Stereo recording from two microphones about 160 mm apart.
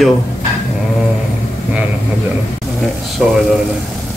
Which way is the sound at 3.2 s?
5° right (ahead or behind).